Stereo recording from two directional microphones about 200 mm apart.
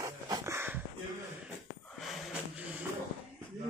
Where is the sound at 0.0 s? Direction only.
15° right (ahead or behind).